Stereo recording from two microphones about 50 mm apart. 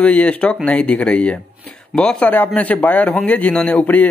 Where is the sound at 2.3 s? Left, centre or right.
Left.